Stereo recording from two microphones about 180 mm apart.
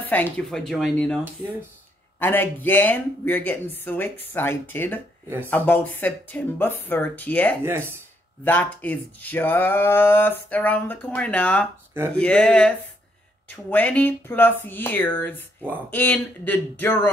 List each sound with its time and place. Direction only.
0.0 s speech: 10° left (ahead or behind)